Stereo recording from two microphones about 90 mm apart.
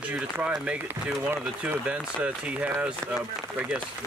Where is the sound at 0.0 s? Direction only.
10° right (ahead or behind).